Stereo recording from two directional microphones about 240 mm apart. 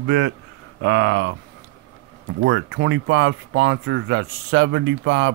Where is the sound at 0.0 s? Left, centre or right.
Right.